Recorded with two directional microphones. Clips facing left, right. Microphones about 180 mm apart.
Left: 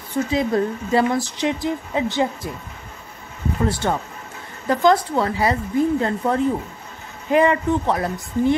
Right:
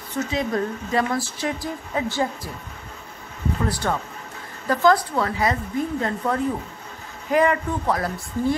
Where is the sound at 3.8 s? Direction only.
25° left (ahead or behind).